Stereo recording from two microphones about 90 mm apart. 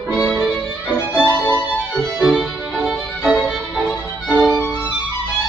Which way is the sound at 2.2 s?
10° right (ahead or behind).